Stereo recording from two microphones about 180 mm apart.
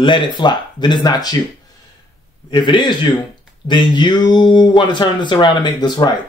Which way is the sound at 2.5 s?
25° left (ahead or behind).